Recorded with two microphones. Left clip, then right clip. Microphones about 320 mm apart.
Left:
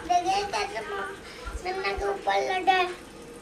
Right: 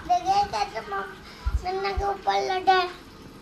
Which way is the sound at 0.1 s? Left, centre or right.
Right.